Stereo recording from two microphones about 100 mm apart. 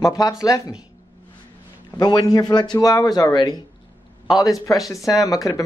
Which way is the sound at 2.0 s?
40° left (ahead or behind).